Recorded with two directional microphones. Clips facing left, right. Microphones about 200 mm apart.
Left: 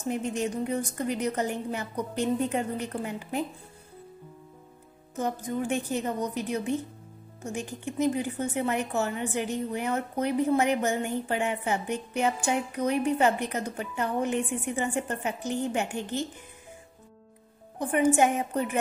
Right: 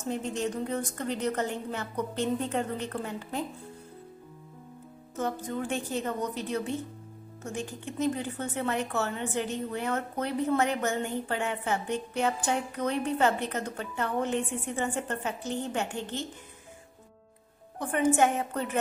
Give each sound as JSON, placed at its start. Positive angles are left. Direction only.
{"t": 0.1, "sound": "speech", "side_deg": 15}
{"t": 5.1, "sound": "speech", "side_deg": 15}
{"t": 17.7, "sound": "speech", "side_deg": 15}